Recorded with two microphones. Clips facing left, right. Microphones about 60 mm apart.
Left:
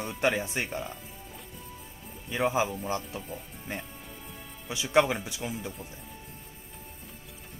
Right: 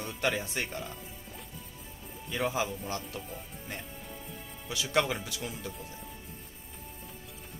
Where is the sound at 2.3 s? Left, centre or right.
Left.